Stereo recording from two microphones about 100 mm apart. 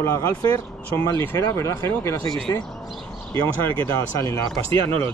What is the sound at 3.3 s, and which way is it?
Speech, 55° right (ahead or behind).